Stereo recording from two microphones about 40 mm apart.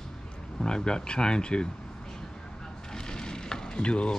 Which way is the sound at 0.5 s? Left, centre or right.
Centre.